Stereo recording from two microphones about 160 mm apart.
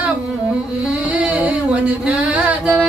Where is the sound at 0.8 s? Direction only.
5° right (ahead or behind).